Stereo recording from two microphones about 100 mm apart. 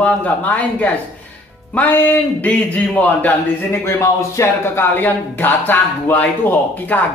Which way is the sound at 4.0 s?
30° left (ahead or behind).